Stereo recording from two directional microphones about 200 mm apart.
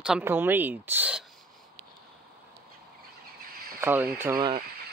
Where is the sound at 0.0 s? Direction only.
5° right (ahead or behind).